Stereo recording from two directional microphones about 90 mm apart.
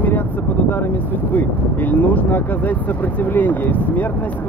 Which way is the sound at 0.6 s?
20° left (ahead or behind).